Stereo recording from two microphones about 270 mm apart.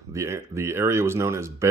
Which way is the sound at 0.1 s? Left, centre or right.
Centre.